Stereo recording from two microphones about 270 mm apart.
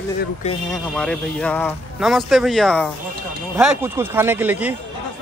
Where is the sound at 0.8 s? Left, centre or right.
Centre.